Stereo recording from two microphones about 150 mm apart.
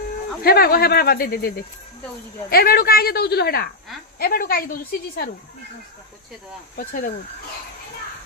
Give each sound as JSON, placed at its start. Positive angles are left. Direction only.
{"t": 0.4, "sound": "a woman's voice", "side_deg": 90}
{"t": 2.5, "sound": "a woman's voice", "side_deg": 90}
{"t": 6.8, "sound": "speech", "side_deg": 70}